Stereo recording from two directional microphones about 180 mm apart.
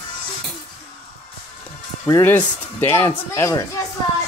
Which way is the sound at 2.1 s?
10° left (ahead or behind).